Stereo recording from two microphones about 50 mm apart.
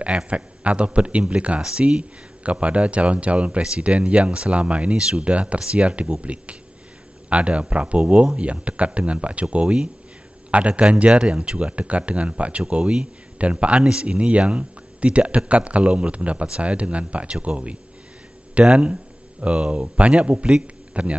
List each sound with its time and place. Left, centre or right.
0.3 s speech: right